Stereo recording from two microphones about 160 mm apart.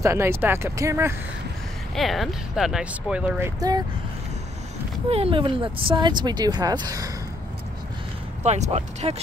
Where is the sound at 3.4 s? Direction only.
25° right (ahead or behind).